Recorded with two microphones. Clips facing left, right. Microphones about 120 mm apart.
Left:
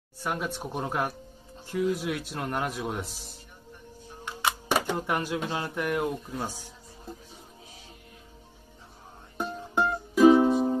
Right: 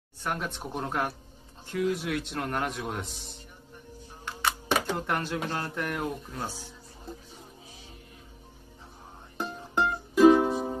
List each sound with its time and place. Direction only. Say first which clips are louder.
0.2 s a man's voice: left 1 dB; 10° left (ahead or behind)
9.8 s music: even; centre (ahead or behind)